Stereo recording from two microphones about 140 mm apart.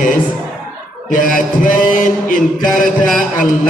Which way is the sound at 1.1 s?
70° left (ahead or behind).